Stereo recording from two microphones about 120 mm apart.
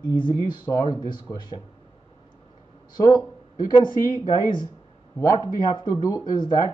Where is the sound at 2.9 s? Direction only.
30° left (ahead or behind).